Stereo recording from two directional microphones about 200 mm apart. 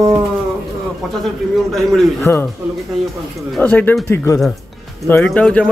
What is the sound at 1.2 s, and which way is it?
Speech, centre (ahead or behind).